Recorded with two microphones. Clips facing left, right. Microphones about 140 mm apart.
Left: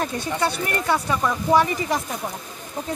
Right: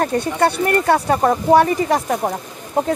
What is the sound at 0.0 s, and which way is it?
Speech, 60° right (ahead or behind).